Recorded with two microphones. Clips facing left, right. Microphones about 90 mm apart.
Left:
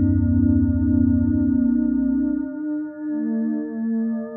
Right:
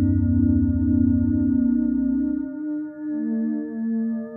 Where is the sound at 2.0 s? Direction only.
30° left (ahead or behind).